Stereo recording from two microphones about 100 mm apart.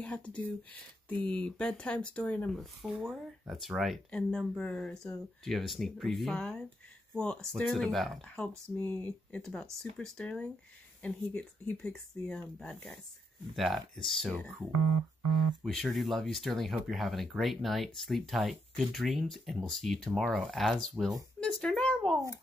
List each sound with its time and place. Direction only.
0.0 s speech: 10° left (ahead or behind)
2.6 s speech: centre (ahead or behind)
8.7 s speech: 15° left (ahead or behind)
14.0 s speech: 5° left (ahead or behind)
15.6 s speech: centre (ahead or behind)
21.4 s a sound: 5° left (ahead or behind)